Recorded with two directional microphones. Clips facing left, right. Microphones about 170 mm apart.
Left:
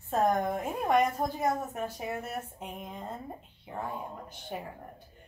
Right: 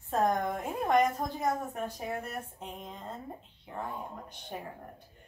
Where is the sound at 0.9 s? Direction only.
5° left (ahead or behind).